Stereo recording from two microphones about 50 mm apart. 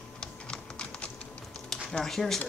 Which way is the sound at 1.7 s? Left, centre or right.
Centre.